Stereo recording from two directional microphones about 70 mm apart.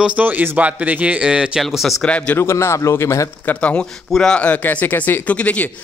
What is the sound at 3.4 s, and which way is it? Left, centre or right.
Speech, centre.